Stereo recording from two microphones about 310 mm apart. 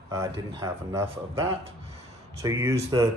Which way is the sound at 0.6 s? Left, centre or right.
Centre.